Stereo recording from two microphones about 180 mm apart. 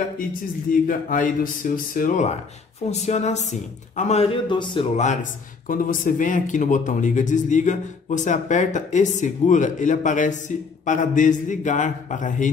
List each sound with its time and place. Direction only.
0.2 s speech: 50° left (ahead or behind); by 4.8 s 30° left (ahead or behind)
4.9 s speech: 45° left (ahead or behind)